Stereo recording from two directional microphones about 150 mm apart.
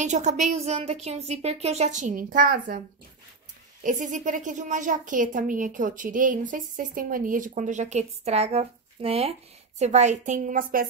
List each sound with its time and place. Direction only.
0.0 s a woman's voice: 55° right (ahead or behind); by 2.8 s 75° right (ahead or behind)
3.8 s a woman's voice: 60° right (ahead or behind)